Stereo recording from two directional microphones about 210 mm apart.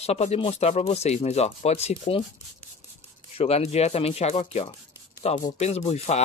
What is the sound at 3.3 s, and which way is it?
Speech, 30° left (ahead or behind).